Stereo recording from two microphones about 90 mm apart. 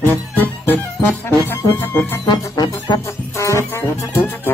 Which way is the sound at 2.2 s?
45° left (ahead or behind).